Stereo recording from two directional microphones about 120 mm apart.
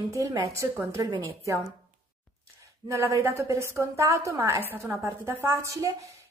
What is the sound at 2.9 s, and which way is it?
A woman's voice, 25° right (ahead or behind).